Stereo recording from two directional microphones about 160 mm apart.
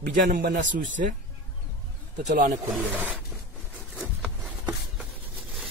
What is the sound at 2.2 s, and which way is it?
Speech, 55° right (ahead or behind).